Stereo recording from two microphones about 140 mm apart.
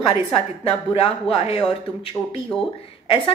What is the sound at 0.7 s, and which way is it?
A woman's voice, 45° left (ahead or behind).